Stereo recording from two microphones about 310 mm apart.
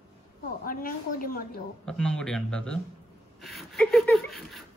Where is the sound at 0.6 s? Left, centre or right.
Left.